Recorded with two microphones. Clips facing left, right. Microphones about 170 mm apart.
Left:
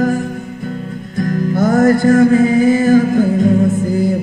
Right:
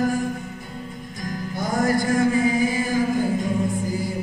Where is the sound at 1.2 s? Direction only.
55° left (ahead or behind).